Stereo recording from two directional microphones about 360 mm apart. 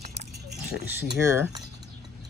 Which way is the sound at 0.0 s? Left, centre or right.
Centre.